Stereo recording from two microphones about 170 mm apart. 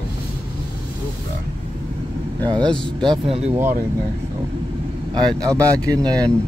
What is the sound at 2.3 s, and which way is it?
Speech, 25° right (ahead or behind).